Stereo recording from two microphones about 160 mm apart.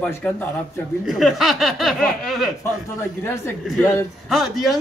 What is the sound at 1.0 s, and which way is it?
Speech, centre (ahead or behind).